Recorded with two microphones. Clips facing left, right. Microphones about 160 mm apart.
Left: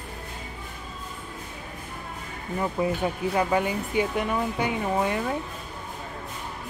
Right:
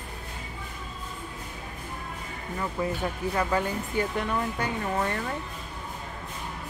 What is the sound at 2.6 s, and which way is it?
Speech, 15° left (ahead or behind).